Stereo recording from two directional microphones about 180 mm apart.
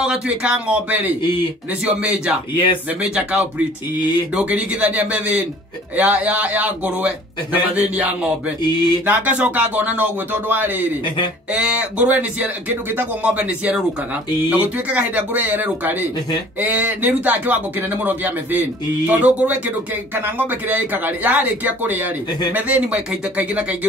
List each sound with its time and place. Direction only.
0.0 s speech: 5° right (ahead or behind)
2.5 s speech: 30° left (ahead or behind)
3.0 s speech: 5° right (ahead or behind)